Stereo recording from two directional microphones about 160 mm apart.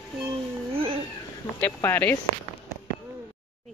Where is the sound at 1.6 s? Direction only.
15° left (ahead or behind).